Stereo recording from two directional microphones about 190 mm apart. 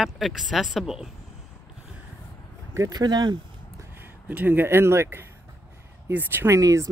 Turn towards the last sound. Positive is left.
turn(degrees=-15)  # may be behind; listen again after turning